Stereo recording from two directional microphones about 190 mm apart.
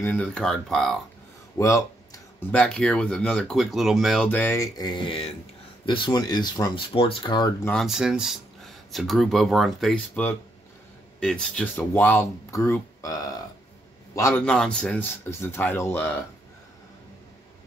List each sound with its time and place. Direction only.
0.0 s speech: 10° left (ahead or behind)
1.6 s speech: 15° left (ahead or behind)
2.5 s speech: 5° left (ahead or behind); by 7.5 s 25° left (ahead or behind)
7.6 s speech: centre (ahead or behind)
14.4 s speech: 5° left (ahead or behind)